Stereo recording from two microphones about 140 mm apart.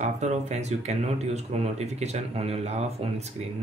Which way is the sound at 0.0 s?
55° right (ahead or behind).